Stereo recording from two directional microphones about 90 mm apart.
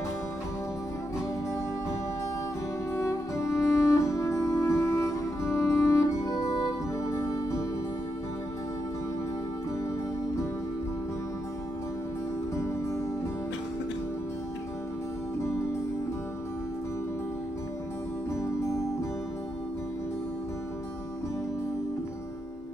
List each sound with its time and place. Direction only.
3.0 s music: 35° left (ahead or behind)
18.3 s music: 35° left (ahead or behind)